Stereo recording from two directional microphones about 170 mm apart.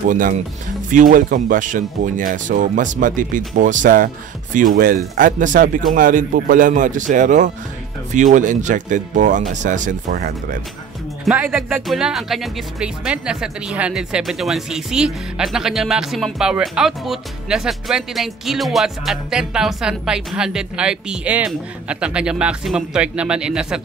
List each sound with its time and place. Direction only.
0.1 s speech: 50° right (ahead or behind)
11.2 s speech: 5° right (ahead or behind)